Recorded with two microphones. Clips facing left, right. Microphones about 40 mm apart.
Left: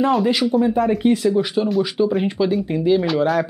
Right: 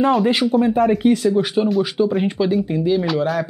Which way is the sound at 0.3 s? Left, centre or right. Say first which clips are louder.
Right 1 dB; right.